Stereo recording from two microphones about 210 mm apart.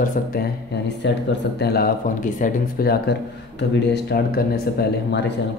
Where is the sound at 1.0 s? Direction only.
55° left (ahead or behind).